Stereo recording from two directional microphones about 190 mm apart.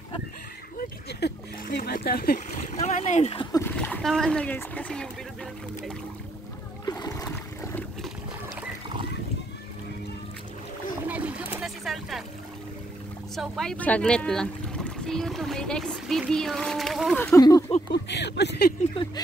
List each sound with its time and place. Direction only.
0.7 s a sound: 60° left (ahead or behind)
2.5 s speech: 35° left (ahead or behind)
3.5 s speech: 10° left (ahead or behind)
6.9 s splash: 20° left (ahead or behind)
7.2 s boat: 10° left (ahead or behind)
11.0 s a sound: 10° right (ahead or behind)
13.4 s speech: 5° left (ahead or behind)
17.2 s speech: 15° left (ahead or behind)
17.9 s speech: 65° left (ahead or behind)